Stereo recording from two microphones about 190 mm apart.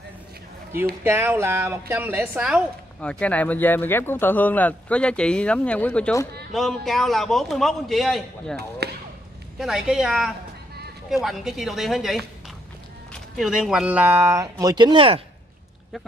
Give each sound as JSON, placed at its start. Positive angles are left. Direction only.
{"t": 1.0, "sound": "speech", "side_deg": -10}
{"t": 3.0, "sound": "a man's voice", "side_deg": 5}
{"t": 8.5, "sound": "speech", "side_deg": -60}
{"t": 9.6, "sound": "a man's voice", "side_deg": 0}
{"t": 13.4, "sound": "speech", "side_deg": -5}